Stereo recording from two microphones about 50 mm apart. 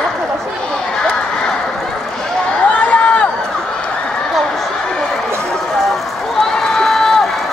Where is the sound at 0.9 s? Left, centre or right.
Centre.